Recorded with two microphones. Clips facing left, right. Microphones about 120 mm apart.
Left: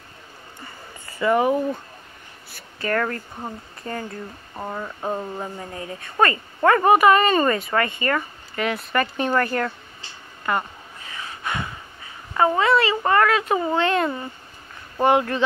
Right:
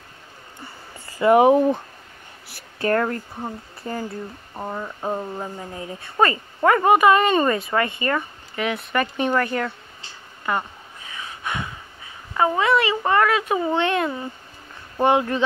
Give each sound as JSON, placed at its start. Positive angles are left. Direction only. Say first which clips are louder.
{"t": 1.2, "sound": "speech", "louder": "right 5 dB", "side_deg": -15}
{"t": 2.9, "sound": "speech", "louder": "right 2 dB", "side_deg": -15}
{"t": 3.3, "sound": "speech", "louder": "right 2 dB", "side_deg": -5}
{"t": 11.4, "sound": "a sound", "louder": "left 1 dB", "side_deg": 0}
{"t": 12.4, "sound": "speech", "louder": "left 1 dB", "side_deg": -10}
{"t": 15.0, "sound": "speech", "louder": "even", "side_deg": -15}